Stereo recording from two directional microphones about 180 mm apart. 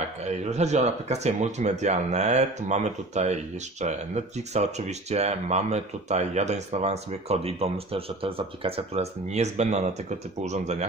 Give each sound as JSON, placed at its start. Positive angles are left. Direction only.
{"t": 0.2, "sound": "speech", "side_deg": -40}